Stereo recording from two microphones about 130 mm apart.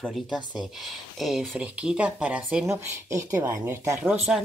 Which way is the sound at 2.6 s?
20° right (ahead or behind).